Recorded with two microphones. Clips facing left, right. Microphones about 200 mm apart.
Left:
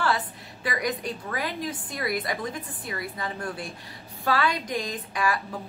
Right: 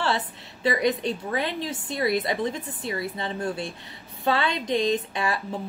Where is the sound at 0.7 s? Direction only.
25° right (ahead or behind).